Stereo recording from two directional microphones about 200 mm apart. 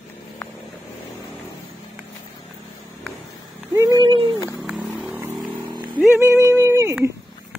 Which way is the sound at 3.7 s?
10° right (ahead or behind).